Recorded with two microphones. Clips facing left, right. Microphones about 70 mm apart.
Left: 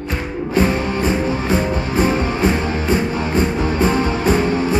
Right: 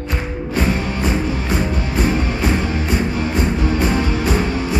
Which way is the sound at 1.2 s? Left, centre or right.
Left.